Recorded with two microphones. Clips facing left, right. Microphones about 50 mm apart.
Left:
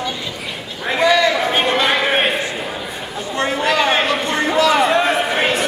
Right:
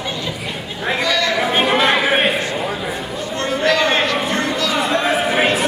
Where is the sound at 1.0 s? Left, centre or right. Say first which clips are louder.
Left 6 dB; centre.